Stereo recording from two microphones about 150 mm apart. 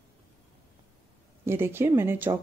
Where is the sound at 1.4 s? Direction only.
15° right (ahead or behind).